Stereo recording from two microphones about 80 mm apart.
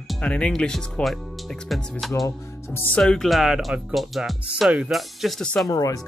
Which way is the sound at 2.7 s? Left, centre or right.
Left.